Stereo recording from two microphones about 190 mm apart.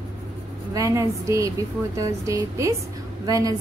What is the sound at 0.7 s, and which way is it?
A woman's voice, 15° right (ahead or behind).